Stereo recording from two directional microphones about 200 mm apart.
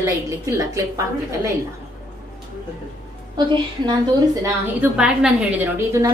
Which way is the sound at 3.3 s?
20° right (ahead or behind).